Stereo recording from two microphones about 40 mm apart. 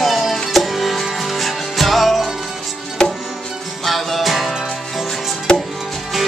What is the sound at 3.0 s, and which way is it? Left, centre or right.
Music, centre.